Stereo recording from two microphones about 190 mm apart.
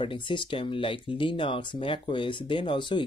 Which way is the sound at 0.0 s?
25° left (ahead or behind).